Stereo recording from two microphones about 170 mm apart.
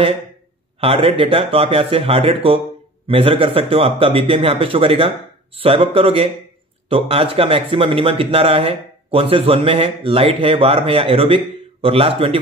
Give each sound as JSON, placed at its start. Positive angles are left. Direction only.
{"t": 0.7, "sound": "speech", "side_deg": -35}